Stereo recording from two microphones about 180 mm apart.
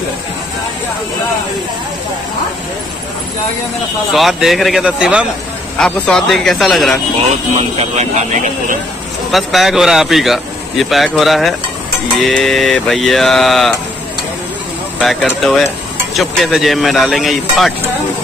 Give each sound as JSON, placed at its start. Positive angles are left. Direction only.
{"t": 4.1, "sound": "speech", "side_deg": 0}
{"t": 7.5, "sound": "speech", "side_deg": -35}
{"t": 9.3, "sound": "speech", "side_deg": 0}
{"t": 15.0, "sound": "speech", "side_deg": 0}